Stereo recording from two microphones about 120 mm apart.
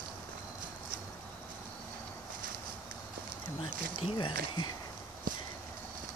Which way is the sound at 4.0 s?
50° left (ahead or behind).